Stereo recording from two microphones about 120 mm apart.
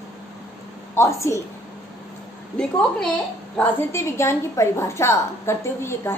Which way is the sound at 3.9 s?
20° left (ahead or behind).